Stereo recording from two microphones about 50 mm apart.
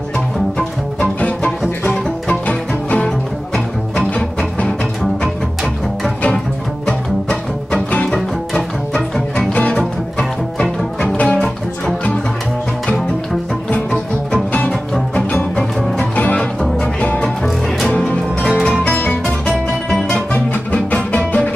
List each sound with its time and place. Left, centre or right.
2.2 s music: left
3.5 s music: centre
6.9 s music: centre
9.4 s music: left
9.8 s music: centre
16.2 s music: left
16.6 s music: centre
18.6 s music: centre